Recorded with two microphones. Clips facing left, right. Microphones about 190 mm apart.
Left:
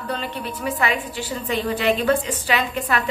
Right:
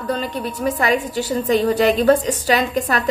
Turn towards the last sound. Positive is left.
turn(degrees=-40)  # may be behind; listen again after turning